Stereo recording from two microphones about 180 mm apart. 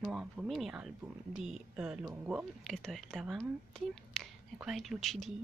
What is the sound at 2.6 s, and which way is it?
Speech, centre (ahead or behind).